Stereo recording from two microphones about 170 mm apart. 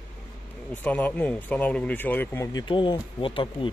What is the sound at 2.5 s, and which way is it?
Speech, 30° left (ahead or behind).